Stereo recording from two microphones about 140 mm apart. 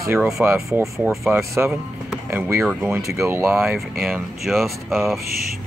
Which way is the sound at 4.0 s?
5° right (ahead or behind).